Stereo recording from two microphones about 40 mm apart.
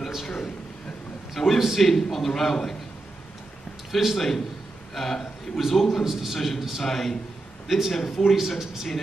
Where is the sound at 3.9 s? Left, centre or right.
Centre.